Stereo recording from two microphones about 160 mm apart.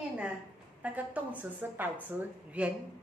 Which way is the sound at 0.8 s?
10° right (ahead or behind).